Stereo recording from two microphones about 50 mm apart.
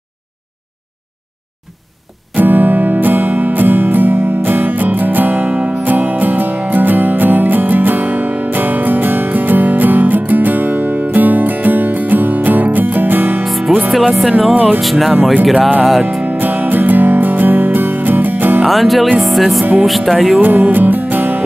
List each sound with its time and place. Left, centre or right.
2.3 s music: right
13.4 s music: centre
14.5 s music: right
14.8 s speech: centre
16.3 s music: right
18.6 s music: centre
19.1 s speech: centre
20.3 s music: right